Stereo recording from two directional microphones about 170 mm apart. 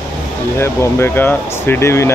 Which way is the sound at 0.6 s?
15° left (ahead or behind).